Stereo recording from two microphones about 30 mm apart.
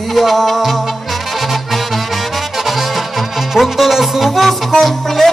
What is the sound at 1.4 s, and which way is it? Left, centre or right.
Music, centre.